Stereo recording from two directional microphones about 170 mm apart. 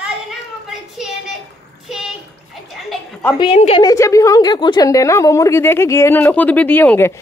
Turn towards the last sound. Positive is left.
turn(degrees=15)  # may be behind; listen again after turning